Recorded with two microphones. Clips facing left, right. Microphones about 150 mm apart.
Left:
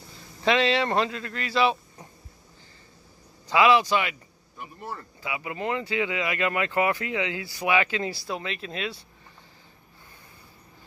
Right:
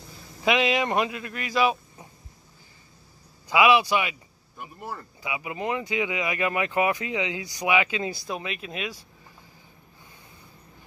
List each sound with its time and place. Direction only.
0.4 s speech: 15° right (ahead or behind)
3.4 s speech: 15° right (ahead or behind)
5.3 s speech: 15° right (ahead or behind)